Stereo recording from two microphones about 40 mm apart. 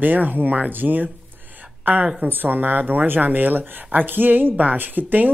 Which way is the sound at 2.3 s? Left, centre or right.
Right.